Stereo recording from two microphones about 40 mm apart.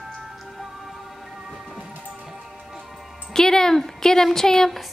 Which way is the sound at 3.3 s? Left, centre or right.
Centre.